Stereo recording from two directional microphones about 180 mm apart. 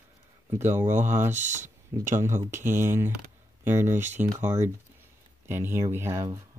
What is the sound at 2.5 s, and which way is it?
Speech, 15° right (ahead or behind).